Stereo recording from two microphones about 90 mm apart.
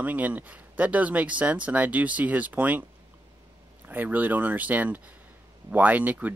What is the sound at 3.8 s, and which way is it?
Speech, 20° right (ahead or behind).